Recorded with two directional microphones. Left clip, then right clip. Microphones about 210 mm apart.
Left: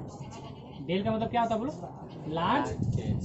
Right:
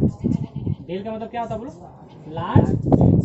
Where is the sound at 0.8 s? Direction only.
20° right (ahead or behind).